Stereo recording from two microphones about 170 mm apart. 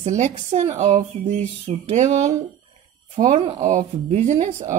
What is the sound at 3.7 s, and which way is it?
Speech, 45° right (ahead or behind).